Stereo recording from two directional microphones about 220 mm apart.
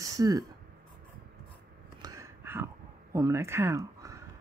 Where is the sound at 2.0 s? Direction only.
15° right (ahead or behind).